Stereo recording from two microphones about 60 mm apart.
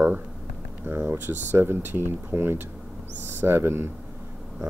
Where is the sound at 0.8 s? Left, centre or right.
Right.